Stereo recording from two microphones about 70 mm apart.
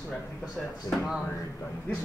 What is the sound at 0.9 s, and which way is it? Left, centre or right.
Speech, left.